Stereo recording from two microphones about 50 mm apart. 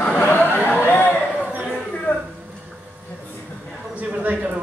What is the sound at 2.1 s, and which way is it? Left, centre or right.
Speech, left.